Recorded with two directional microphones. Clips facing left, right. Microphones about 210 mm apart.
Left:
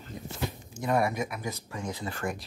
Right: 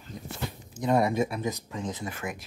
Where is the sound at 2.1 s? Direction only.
5° right (ahead or behind).